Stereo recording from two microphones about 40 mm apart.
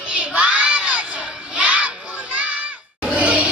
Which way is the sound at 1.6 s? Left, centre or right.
Right.